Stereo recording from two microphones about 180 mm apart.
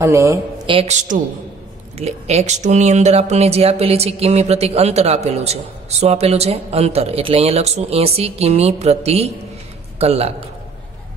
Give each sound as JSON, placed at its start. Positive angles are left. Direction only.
{"t": 0.0, "sound": "a woman's voice", "side_deg": -15}
{"t": 0.7, "sound": "speech", "side_deg": -30}
{"t": 2.0, "sound": "a man's voice", "side_deg": -35}